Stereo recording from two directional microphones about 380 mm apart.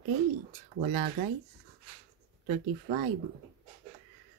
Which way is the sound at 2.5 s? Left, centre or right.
Right.